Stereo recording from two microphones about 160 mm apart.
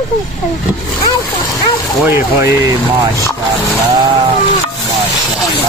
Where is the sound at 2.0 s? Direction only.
20° right (ahead or behind).